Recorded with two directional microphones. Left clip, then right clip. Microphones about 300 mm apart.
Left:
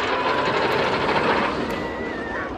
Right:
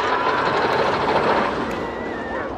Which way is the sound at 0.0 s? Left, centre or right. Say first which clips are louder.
Right 2 dB; right.